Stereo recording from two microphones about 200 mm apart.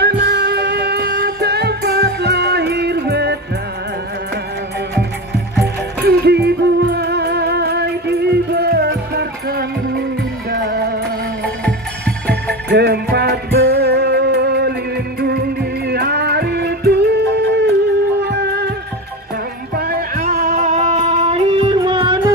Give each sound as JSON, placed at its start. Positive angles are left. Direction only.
{"t": 0.0, "sound": "music", "side_deg": -55}
{"t": 5.6, "sound": "music", "side_deg": -55}
{"t": 11.4, "sound": "music", "side_deg": 5}
{"t": 12.6, "sound": "music", "side_deg": -55}
{"t": 19.7, "sound": "music", "side_deg": -50}